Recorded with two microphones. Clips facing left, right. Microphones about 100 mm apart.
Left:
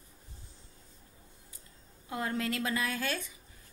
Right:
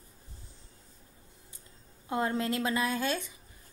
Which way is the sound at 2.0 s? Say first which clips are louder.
Right 4 dB; 25° right (ahead or behind).